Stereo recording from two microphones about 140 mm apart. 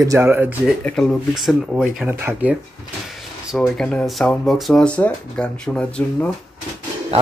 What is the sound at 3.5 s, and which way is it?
Speech, 5° left (ahead or behind).